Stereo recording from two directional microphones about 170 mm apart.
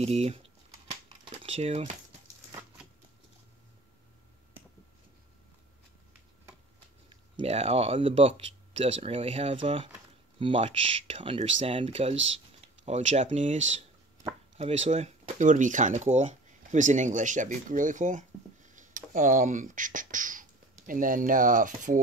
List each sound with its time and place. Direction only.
0.0 s speech: 40° right (ahead or behind)
1.0 s typing: 35° right (ahead or behind)
7.1 s speech: 35° right (ahead or behind); by 22.0 s 50° right (ahead or behind)